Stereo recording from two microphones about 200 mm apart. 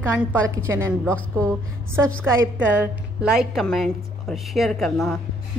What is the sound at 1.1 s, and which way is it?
Speech, 5° left (ahead or behind).